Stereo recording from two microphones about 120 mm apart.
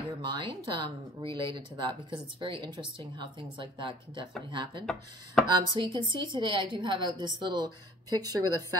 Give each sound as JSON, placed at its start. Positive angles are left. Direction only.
{"t": 0.2, "sound": "a woman's voice", "side_deg": -40}